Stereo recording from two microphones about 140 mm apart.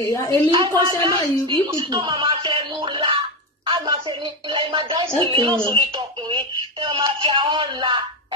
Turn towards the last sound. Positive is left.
turn(degrees=-35)  # may be behind; listen again after turning